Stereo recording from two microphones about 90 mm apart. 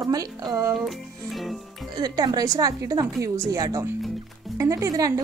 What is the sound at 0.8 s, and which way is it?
Music, centre (ahead or behind).